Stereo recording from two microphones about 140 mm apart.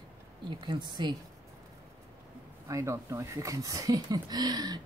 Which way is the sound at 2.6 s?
20° right (ahead or behind).